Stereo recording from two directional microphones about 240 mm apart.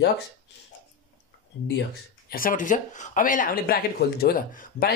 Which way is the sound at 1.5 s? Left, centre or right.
Left.